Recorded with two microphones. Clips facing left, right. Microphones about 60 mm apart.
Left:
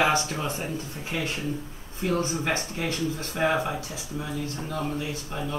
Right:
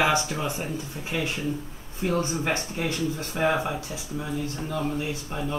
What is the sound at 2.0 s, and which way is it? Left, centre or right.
Speech, right.